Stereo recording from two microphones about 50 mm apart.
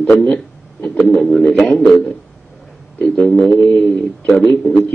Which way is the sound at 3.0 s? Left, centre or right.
Centre.